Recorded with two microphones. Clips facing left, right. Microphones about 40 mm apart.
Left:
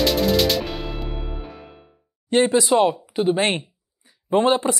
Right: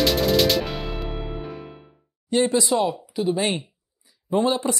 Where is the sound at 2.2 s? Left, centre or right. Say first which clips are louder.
Left 3 dB; left.